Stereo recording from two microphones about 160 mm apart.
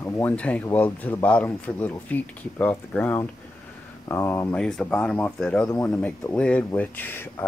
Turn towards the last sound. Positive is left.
turn(degrees=15)  # may be behind; listen again after turning